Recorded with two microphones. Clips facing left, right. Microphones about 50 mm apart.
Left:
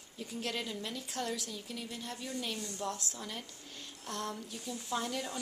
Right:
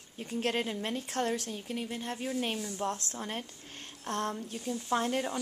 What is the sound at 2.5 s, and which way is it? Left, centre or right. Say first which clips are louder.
Speech: right 4 dB; centre.